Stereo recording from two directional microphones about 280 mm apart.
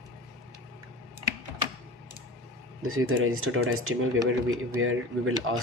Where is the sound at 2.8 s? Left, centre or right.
Right.